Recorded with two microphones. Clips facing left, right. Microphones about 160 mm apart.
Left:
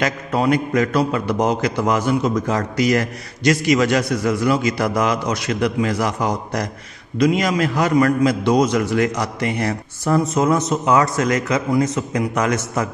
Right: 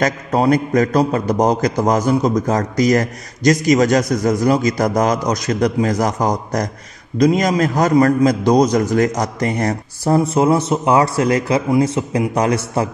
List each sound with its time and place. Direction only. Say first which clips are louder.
0.0 s a man's voice: right 3 dB; 40° right (ahead or behind)
10.1 s a man's voice: right 3 dB; 30° right (ahead or behind)